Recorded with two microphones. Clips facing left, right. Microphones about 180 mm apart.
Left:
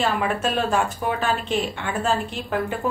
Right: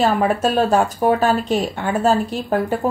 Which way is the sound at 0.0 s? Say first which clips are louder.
Right 6 dB; 40° right (ahead or behind).